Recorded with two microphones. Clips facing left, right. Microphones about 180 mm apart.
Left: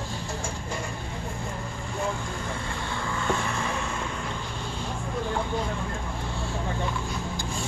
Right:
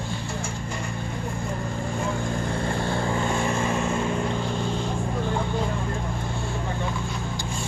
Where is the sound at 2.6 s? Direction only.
45° right (ahead or behind).